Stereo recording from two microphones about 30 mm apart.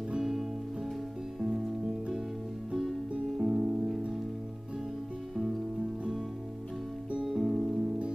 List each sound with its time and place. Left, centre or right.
0.2 s music: centre
3.3 s music: right
5.3 s music: centre
7.2 s music: centre